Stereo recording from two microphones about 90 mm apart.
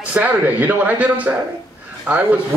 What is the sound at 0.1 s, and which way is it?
Speech, 15° right (ahead or behind).